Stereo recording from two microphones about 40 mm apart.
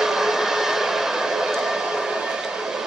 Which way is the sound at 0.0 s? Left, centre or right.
Centre.